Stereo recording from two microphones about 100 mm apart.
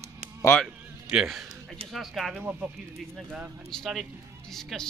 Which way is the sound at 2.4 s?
15° right (ahead or behind).